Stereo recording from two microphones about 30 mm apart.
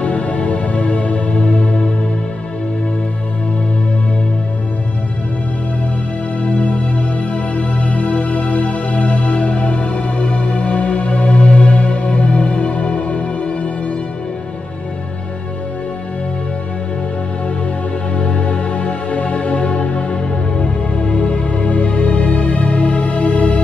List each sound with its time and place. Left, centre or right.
0.0 s music: left
6.4 s music: left
18.1 s music: left